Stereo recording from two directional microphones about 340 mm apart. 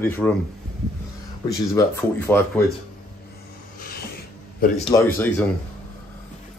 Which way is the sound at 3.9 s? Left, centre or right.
Left.